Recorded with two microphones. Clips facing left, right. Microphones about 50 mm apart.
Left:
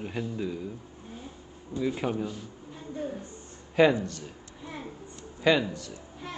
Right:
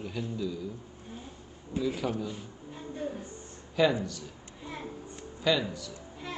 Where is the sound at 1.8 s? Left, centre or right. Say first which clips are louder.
Left 2 dB; left.